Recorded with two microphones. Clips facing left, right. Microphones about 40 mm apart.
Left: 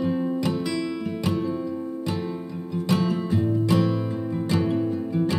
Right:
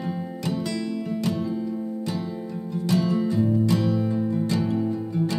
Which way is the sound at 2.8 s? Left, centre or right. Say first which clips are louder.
Right 2 dB; left.